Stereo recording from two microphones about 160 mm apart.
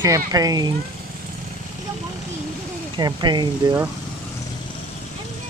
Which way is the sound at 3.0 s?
25° right (ahead or behind).